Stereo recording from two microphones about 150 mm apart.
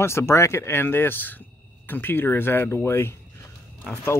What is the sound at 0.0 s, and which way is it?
Speech, 15° left (ahead or behind).